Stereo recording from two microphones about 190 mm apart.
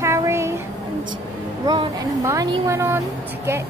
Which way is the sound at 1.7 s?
20° right (ahead or behind).